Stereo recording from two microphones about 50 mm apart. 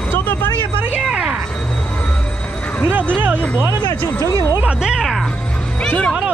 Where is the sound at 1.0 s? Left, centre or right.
Centre.